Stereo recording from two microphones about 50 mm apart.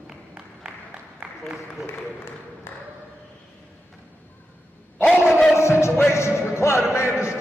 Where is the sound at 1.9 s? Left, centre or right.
Left.